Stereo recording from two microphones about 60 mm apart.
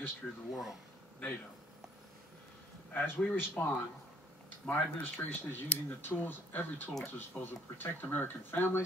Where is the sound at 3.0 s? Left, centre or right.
Left.